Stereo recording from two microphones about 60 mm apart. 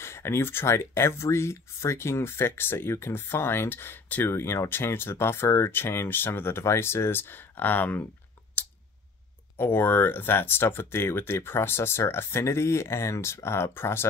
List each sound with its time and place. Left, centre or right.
0.0 s speech: left
9.6 s speech: left